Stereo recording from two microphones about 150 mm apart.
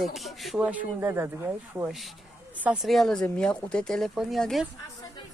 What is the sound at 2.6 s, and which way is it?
A woman's voice, 5° right (ahead or behind).